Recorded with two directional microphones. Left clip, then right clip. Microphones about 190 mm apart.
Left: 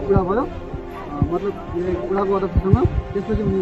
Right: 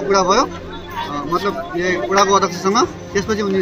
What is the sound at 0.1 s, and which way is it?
Speech, 5° right (ahead or behind).